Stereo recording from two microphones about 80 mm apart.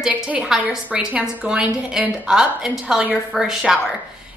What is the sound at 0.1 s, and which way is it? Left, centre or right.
A woman's voice, centre.